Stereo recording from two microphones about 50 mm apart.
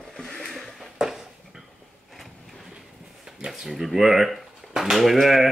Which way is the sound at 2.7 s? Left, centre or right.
Centre.